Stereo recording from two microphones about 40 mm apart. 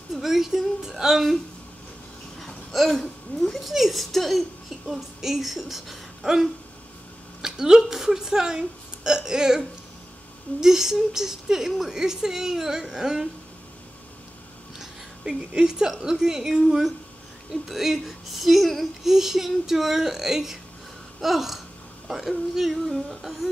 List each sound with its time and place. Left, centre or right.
0.1 s a woman's voice: centre
2.3 s a woman's voice: centre
15.5 s a woman's voice: centre
21.2 s a sound: centre
23.2 s a woman's voice: centre